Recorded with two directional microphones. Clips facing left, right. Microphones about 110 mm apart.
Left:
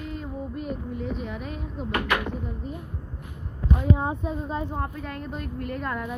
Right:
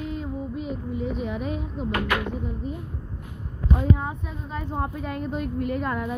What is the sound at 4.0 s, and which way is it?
Speech, 30° left (ahead or behind).